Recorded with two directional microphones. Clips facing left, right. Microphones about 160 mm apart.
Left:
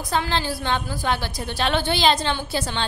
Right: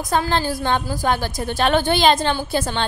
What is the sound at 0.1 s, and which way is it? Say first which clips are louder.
A woman's voice: right 4 dB; 45° right (ahead or behind).